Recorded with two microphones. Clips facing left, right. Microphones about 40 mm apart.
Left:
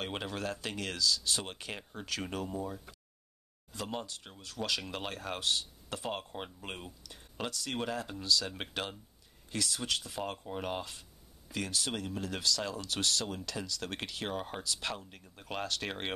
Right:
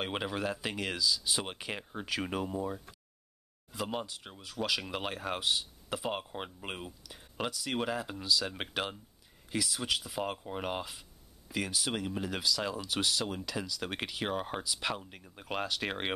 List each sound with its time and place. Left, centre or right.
0.0 s speech: centre